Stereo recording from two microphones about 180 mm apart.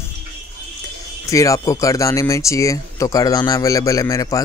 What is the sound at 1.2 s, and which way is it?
Speech, 20° left (ahead or behind).